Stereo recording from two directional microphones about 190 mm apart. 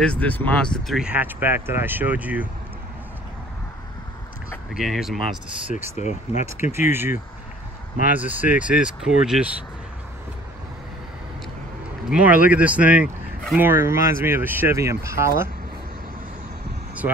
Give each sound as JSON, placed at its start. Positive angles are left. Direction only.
{"t": 0.0, "sound": "speech", "side_deg": 5}
{"t": 4.7, "sound": "speech", "side_deg": 0}
{"t": 5.9, "sound": "speech", "side_deg": 35}
{"t": 6.4, "sound": "speech", "side_deg": -15}
{"t": 12.1, "sound": "speech", "side_deg": -5}